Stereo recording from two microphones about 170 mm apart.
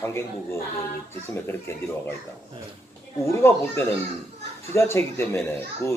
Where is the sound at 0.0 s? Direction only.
15° left (ahead or behind).